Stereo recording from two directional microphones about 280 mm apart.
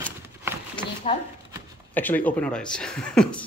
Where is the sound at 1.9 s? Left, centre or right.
Centre.